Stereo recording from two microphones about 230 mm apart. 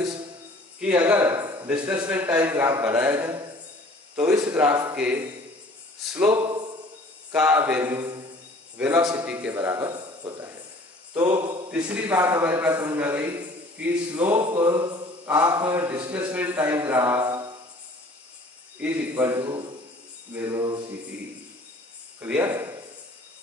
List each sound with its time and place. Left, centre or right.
0.7 s mantra: centre
4.9 s a man's voice: centre
6.3 s mantra: centre
7.3 s mantra: centre
8.7 s a man's voice: centre
9.0 s mantra: centre
11.7 s mantra: centre
14.3 s mantra: centre
18.8 s mantra: centre
22.2 s speech: centre